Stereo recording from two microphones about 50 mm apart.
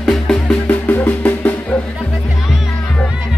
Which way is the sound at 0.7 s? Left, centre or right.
Left.